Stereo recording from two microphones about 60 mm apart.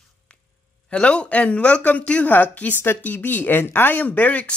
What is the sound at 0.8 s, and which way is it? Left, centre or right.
Speech, centre.